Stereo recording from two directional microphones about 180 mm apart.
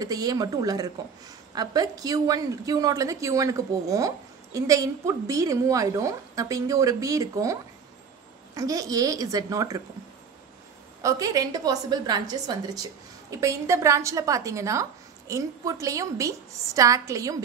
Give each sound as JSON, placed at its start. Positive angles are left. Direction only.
{"t": 0.0, "sound": "a woman's voice", "side_deg": -20}
{"t": 8.5, "sound": "a woman's voice", "side_deg": -20}
{"t": 11.0, "sound": "a woman's voice", "side_deg": -20}